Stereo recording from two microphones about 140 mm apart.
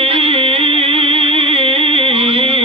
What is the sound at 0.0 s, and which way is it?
Music, 40° right (ahead or behind).